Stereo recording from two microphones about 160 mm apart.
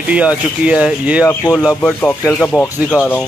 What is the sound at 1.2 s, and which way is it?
Speech, 20° left (ahead or behind).